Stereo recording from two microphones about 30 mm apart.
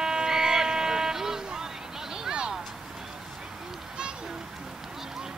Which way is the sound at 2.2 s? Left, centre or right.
Right.